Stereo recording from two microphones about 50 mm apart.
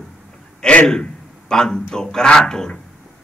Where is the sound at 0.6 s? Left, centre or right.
Left.